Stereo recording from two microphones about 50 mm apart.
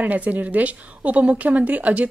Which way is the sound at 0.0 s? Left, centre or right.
Right.